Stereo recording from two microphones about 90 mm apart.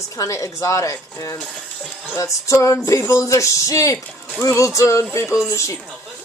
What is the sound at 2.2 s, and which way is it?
A woman's voice, 35° left (ahead or behind).